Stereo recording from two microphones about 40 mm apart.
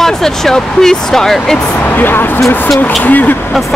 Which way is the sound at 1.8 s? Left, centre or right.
Left.